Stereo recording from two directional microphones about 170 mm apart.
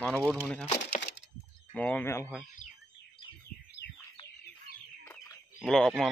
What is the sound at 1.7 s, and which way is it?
Speech, 10° left (ahead or behind).